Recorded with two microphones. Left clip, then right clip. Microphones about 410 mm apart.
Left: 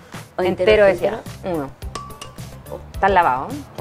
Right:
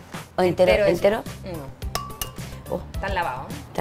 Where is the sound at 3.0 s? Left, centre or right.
Left.